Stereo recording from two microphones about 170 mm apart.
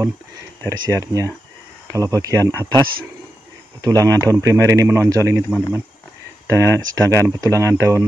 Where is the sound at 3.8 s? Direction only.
20° right (ahead or behind).